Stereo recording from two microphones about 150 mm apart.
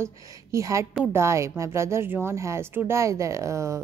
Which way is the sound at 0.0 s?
20° right (ahead or behind).